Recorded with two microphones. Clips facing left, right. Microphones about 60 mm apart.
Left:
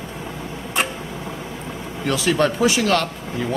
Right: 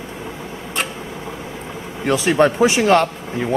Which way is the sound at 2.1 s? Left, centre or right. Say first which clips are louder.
Right 4 dB; right.